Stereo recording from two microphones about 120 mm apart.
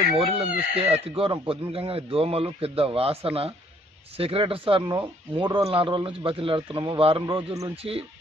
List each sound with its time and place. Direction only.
0.1 s speech: 55° right (ahead or behind)
7.7 s speech: 55° right (ahead or behind)